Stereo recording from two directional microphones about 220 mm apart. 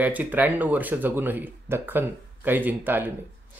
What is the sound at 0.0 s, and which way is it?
Speech, 5° right (ahead or behind).